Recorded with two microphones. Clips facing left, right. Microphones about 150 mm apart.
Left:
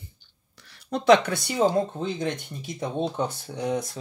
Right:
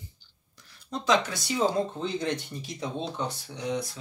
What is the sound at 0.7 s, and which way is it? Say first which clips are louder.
Speech: left 7 dB; 65° left (ahead or behind).